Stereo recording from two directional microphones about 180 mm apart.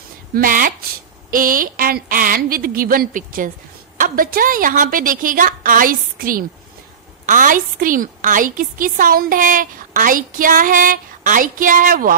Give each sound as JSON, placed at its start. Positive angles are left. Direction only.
{"t": 0.3, "sound": "a woman's voice", "side_deg": -50}